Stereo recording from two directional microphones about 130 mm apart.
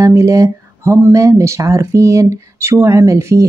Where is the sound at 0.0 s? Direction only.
25° right (ahead or behind).